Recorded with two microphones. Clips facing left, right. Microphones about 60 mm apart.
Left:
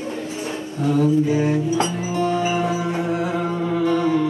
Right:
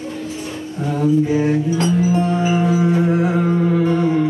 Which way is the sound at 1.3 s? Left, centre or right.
Right.